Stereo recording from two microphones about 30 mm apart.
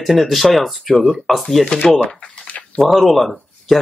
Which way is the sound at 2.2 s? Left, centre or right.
Left.